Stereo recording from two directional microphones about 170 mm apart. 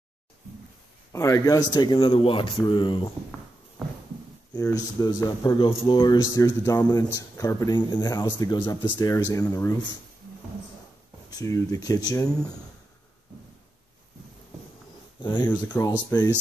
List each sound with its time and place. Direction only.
1.1 s speech: 20° left (ahead or behind)
4.6 s speech: 20° left (ahead or behind)
11.2 s speech: 20° left (ahead or behind)
15.1 s speech: 25° left (ahead or behind)
15.7 s speech: 15° left (ahead or behind)